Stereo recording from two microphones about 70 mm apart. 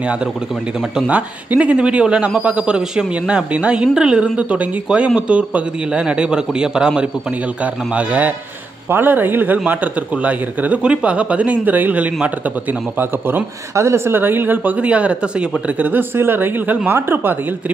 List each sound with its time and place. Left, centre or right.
0.9 s a man's voice: centre
13.7 s speech: right; by 15.1 s centre
15.8 s speech: right